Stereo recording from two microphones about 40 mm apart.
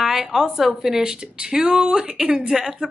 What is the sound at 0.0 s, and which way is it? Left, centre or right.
Speech, centre.